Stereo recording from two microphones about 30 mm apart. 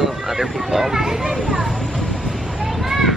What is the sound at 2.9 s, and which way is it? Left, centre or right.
Children playing, centre.